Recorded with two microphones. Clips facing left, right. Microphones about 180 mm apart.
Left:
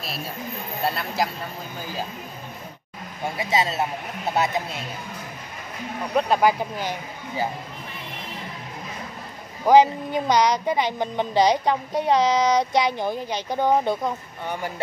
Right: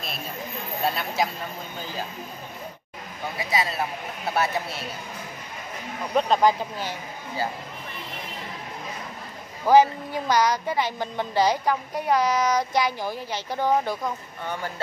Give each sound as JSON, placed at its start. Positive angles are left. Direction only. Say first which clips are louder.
{"t": 0.8, "sound": "speech", "louder": "even", "side_deg": 0}
{"t": 3.3, "sound": "speech", "louder": "left 3 dB", "side_deg": 25}
{"t": 6.1, "sound": "speech", "louder": "even", "side_deg": 10}
{"t": 9.7, "sound": "speech", "louder": "left 2 dB", "side_deg": 20}